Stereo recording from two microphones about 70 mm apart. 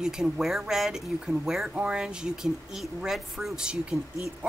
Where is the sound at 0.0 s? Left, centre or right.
Centre.